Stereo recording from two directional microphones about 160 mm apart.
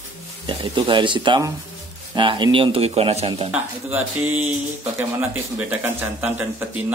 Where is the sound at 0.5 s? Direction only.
30° right (ahead or behind).